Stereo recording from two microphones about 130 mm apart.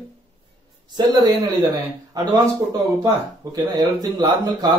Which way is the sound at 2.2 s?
30° right (ahead or behind).